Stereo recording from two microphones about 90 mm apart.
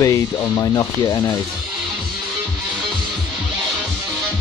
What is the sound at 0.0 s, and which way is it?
Speech, 40° left (ahead or behind).